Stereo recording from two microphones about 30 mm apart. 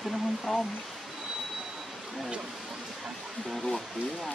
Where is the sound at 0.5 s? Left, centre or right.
Centre.